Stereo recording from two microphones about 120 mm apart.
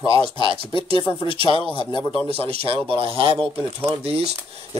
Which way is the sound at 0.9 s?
40° left (ahead or behind).